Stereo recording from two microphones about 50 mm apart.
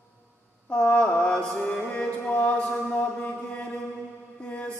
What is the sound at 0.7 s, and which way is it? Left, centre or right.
Mantra, centre.